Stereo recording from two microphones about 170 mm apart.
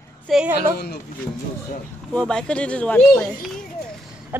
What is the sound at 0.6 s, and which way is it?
Speech, 70° left (ahead or behind).